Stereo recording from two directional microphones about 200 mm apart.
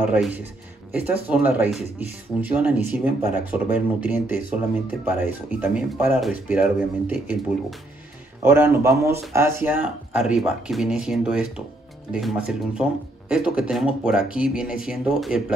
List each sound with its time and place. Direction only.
0.0 s speech: 5° right (ahead or behind)
8.5 s speech: 10° right (ahead or behind)